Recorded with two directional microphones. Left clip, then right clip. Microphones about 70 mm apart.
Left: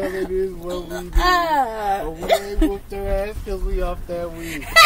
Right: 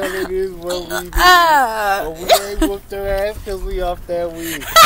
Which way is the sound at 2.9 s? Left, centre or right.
Centre.